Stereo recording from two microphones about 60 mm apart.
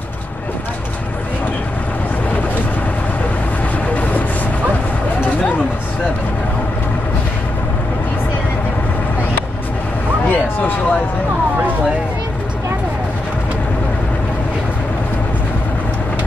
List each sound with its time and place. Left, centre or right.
3.9 s vehicle: left
10.3 s vehicle: left